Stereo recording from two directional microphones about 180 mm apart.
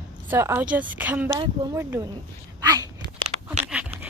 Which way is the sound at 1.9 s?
20° right (ahead or behind).